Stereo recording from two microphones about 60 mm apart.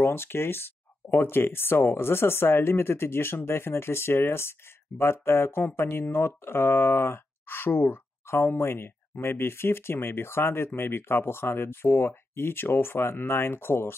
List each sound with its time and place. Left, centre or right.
0.0 s speech: left